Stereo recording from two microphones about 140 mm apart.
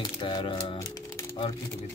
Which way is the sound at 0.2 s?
35° left (ahead or behind).